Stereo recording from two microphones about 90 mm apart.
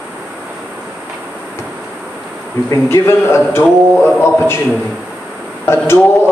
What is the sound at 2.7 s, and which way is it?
Speech, 30° left (ahead or behind).